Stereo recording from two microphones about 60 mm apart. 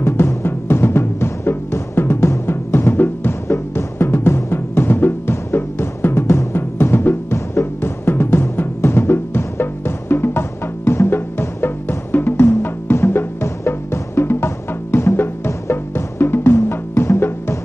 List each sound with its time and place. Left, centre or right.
0.0 s timpani: left
10.9 s music: left